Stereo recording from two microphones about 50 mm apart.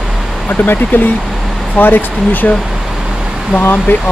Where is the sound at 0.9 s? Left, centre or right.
Left.